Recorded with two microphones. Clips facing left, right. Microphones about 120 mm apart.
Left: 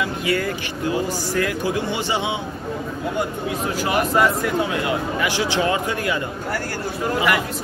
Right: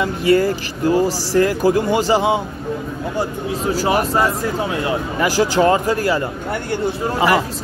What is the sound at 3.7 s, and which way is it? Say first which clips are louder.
Speech: right 2 dB; 35° right (ahead or behind).